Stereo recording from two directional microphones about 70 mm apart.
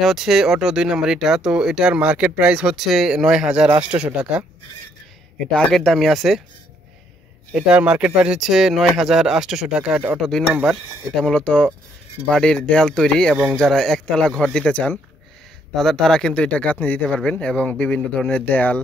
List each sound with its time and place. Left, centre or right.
0.0 s speech: centre
2.7 s speech: centre
5.4 s speech: centre
7.5 s speech: centre
8.4 s speech: centre
10.1 s speech: centre
11.2 s speech: centre
15.7 s speech: centre; by 18.8 s left